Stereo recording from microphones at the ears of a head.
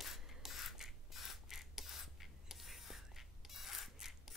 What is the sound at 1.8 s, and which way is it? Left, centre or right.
Spray, left.